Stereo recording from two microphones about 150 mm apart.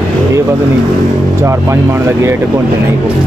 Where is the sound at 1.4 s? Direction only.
20° right (ahead or behind).